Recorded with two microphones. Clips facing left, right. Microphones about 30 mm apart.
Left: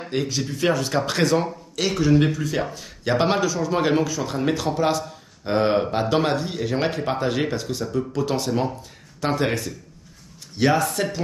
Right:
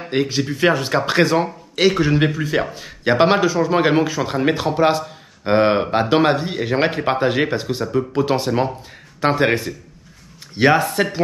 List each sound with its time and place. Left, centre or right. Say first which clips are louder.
0.1 s speech: right 6 dB; right